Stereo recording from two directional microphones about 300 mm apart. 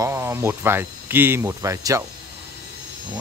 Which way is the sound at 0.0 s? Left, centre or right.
Centre.